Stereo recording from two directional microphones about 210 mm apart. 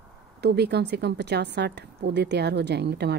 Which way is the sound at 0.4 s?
50° right (ahead or behind).